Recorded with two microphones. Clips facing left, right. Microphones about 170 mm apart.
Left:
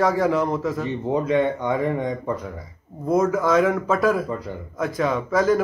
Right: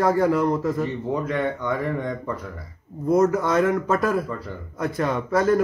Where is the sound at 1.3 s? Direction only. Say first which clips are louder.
Left 4 dB; 20° left (ahead or behind).